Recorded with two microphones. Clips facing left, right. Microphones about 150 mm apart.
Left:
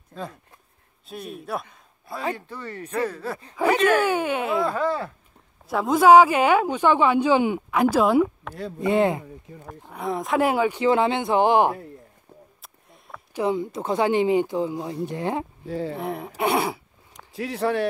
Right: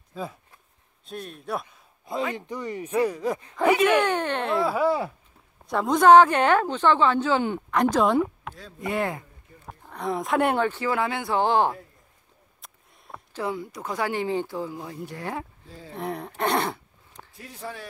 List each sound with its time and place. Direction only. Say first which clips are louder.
0.1 s speech: even; 5° right (ahead or behind)
2.3 s speech: right 4 dB; 15° right (ahead or behind)
3.9 s speech: left 1 dB; 10° left (ahead or behind)
4.7 s speech: right 2 dB; 10° right (ahead or behind)
5.7 s speech: left 1 dB; 5° left (ahead or behind)
8.7 s speech: left 7 dB; 25° left (ahead or behind)
9.8 s speech: left 1 dB; 5° left (ahead or behind)
10.7 s speech: left 6 dB; 20° left (ahead or behind)
12.6 s a sound: left 2 dB; centre (ahead or behind)
13.3 s speech: left 6 dB; 20° left (ahead or behind)
15.6 s speech: left 16 dB; 70° left (ahead or behind)
15.9 s speech: left 2 dB; centre (ahead or behind)
16.3 s a sound: left 2 dB; 10° left (ahead or behind)
17.3 s a man's voice: left 14 dB; 80° left